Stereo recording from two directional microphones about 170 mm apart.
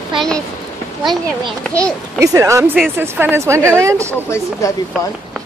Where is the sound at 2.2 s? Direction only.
20° right (ahead or behind).